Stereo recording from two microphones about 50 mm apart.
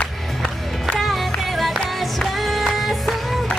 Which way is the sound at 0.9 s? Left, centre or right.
Centre.